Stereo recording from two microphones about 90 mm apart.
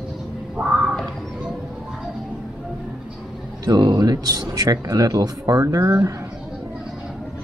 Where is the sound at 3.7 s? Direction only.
50° right (ahead or behind).